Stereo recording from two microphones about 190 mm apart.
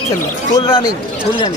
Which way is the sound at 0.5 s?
25° left (ahead or behind).